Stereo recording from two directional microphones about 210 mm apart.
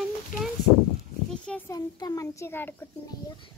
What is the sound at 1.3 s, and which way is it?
A child's voice, 5° left (ahead or behind).